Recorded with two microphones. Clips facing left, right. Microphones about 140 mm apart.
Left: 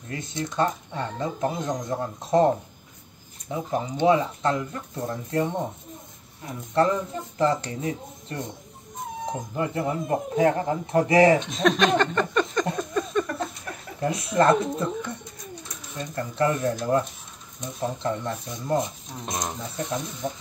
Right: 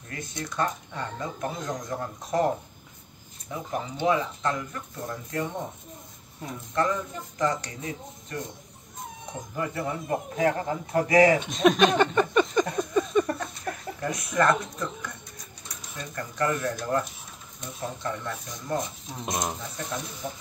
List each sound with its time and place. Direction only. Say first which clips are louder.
0.1 s speech: left 4 dB; 25° left (ahead or behind)
6.7 s speech: left 5 dB; 30° left (ahead or behind)
9.6 s speech: left 3 dB; 25° left (ahead or behind)
11.3 s speech: right 1 dB; 5° right (ahead or behind)
13.1 s a sound: right 2 dB; 10° right (ahead or behind)
13.9 s speech: left 5 dB; 25° left (ahead or behind)
16.2 s speech: left 3 dB; 25° left (ahead or behind)
19.2 s speech: right 1 dB; 5° right (ahead or behind)
19.8 s speech: left 7 dB; 20° left (ahead or behind)